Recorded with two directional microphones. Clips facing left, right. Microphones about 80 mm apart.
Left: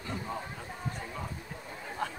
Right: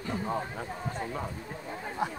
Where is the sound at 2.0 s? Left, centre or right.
Centre.